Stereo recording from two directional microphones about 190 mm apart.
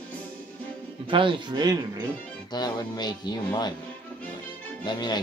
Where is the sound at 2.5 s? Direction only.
20° left (ahead or behind).